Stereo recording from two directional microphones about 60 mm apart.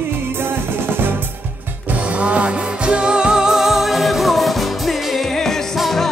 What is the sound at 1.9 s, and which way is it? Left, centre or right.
Music, right.